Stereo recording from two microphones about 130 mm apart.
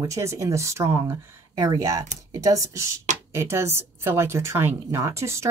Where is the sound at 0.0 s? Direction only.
25° right (ahead or behind).